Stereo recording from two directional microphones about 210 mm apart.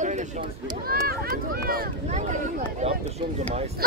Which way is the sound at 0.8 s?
45° right (ahead or behind).